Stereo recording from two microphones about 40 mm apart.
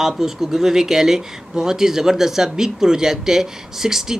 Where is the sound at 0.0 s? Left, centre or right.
Centre.